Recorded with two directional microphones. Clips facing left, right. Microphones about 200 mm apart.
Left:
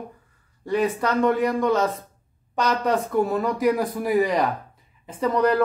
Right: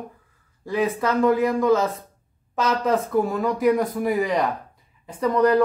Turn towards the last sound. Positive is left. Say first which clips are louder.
# right 2 dB
turn(degrees=0)  # may be behind; listen again after turning